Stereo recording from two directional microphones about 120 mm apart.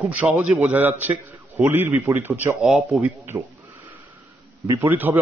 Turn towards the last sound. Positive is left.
turn(degrees=-20)  # may be behind; listen again after turning